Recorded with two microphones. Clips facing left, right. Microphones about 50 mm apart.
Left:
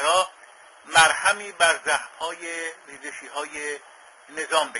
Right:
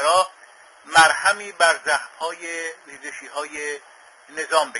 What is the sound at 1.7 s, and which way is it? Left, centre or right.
Speech, right.